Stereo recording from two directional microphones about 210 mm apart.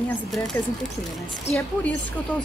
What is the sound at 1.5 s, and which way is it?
Speech, 30° left (ahead or behind).